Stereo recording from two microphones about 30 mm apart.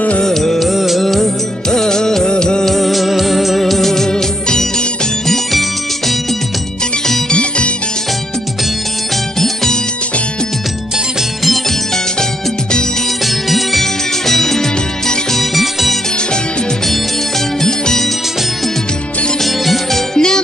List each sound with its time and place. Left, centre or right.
0.2 s music of bollywood: centre
0.6 s music of bollywood: centre
1.0 s music: centre
1.7 s music of bollywood: centre
2.6 s music: centre
4.1 s music: left
5.3 s music: centre
7.2 s music: left
13.5 s music: centre
15.5 s music: centre
17.6 s music: centre
19.4 s music: centre
20.2 s music: left